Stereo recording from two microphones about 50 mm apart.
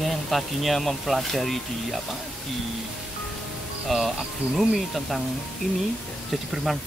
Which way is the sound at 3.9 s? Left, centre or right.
Centre.